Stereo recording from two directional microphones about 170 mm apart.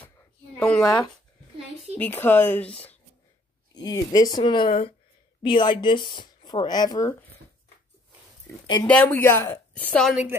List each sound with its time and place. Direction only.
0.0 s a sound: 10° left (ahead or behind)
0.8 s speech: 25° left (ahead or behind)
2.0 s a woman's voice: 10° left (ahead or behind)
3.7 s speech: 20° left (ahead or behind)
8.8 s a woman's voice: 10° left (ahead or behind)